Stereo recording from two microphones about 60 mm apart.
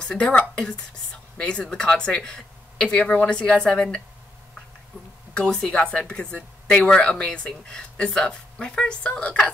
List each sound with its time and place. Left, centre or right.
0.0 s speech: centre
5.3 s speech: centre